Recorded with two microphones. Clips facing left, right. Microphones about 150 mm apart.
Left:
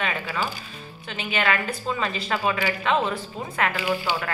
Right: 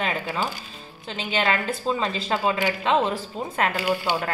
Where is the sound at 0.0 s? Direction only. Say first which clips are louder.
Right 1 dB; 25° right (ahead or behind).